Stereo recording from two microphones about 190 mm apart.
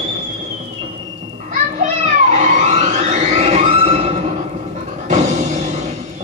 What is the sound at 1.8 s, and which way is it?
Music, 40° right (ahead or behind).